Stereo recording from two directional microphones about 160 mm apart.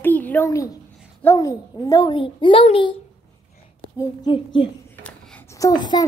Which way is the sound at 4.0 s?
30° left (ahead or behind).